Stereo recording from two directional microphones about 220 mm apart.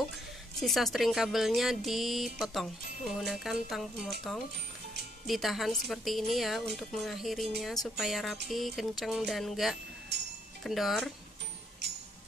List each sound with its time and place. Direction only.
0.6 s speech: centre (ahead or behind)
5.2 s speech: centre (ahead or behind)